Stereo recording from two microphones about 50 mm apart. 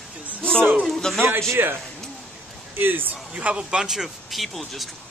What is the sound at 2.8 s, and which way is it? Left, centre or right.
Speech, right.